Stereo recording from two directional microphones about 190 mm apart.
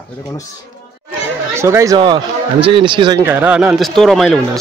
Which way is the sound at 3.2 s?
10° right (ahead or behind).